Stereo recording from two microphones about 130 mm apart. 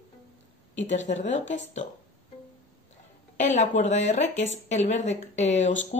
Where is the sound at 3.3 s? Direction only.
65° left (ahead or behind).